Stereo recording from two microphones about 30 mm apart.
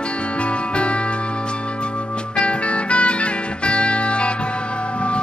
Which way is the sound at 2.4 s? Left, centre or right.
Left.